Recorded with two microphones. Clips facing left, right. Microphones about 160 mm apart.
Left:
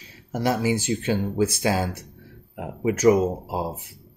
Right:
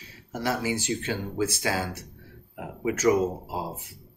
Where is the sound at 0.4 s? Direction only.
15° left (ahead or behind).